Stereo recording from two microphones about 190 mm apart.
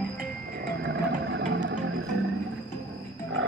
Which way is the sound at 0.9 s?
65° right (ahead or behind).